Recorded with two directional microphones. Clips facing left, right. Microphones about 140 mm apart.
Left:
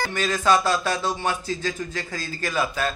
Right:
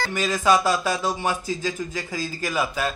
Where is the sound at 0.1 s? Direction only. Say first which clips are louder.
Right 1 dB; 10° right (ahead or behind).